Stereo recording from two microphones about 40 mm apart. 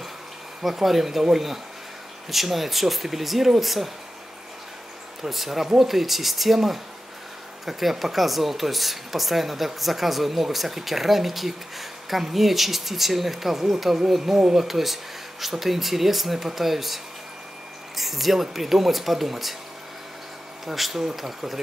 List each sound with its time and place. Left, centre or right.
0.7 s speech: centre
5.2 s speech: centre
20.6 s speech: centre